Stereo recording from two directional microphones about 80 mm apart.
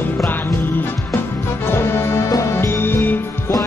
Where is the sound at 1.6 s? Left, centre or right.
Left.